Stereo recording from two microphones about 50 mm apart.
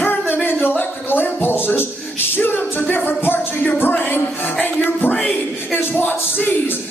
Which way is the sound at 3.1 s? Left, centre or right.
Left.